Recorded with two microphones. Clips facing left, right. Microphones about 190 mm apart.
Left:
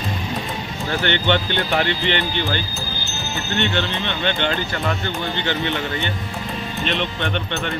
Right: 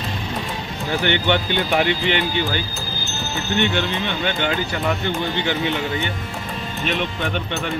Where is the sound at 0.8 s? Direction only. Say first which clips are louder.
Right 1 dB; 10° right (ahead or behind).